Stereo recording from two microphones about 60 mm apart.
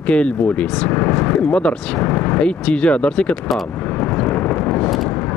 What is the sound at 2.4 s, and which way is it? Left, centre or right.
Speech, centre.